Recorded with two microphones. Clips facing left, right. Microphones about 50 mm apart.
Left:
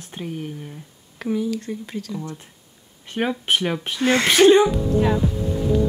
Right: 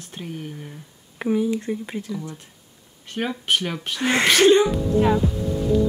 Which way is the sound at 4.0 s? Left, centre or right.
Right.